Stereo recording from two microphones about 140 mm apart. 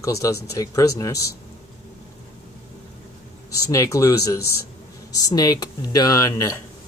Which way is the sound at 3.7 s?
20° left (ahead or behind).